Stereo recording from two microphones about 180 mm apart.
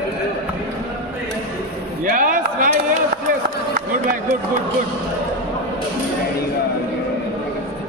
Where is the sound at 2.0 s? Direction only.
50° right (ahead or behind).